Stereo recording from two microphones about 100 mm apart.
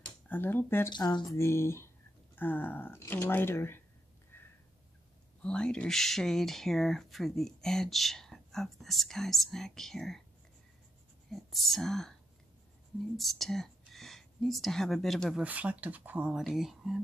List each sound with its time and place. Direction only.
0.3 s speech: 20° left (ahead or behind)
0.8 s speech: 50° left (ahead or behind)
1.3 s speech: 25° left (ahead or behind)
5.4 s speech: 10° left (ahead or behind)
11.2 s speech: centre (ahead or behind)
13.2 s speech: centre (ahead or behind)
15.4 s speech: 15° right (ahead or behind)